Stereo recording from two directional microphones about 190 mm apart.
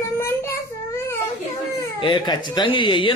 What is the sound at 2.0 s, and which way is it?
Speech, 25° left (ahead or behind).